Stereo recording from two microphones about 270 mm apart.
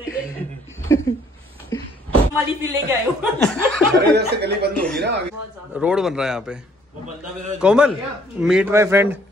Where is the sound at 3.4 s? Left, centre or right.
Centre.